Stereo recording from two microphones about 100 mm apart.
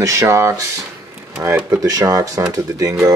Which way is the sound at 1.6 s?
35° right (ahead or behind).